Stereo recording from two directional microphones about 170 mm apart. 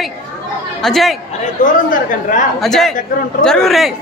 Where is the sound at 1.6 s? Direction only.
50° left (ahead or behind).